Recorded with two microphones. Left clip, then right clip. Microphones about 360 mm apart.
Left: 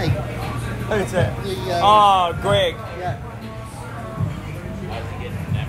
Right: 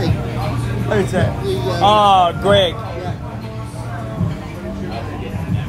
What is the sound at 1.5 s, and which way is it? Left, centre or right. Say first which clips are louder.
Music: right 3 dB; left.